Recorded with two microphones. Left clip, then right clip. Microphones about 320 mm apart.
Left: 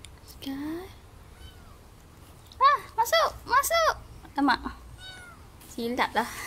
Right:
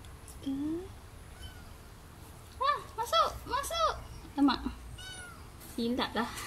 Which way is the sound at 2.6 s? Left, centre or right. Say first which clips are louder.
Left 10 dB; left.